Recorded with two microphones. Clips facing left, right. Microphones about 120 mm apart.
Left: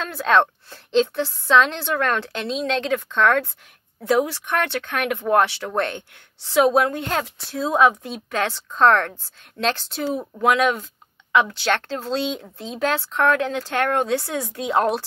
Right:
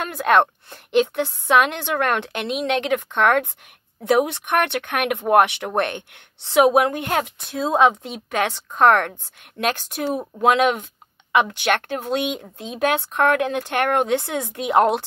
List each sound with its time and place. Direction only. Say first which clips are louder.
0.0 s a woman's voice: right 1 dB; 15° right (ahead or behind)
10.4 s a woman's voice: right 2 dB; 25° right (ahead or behind)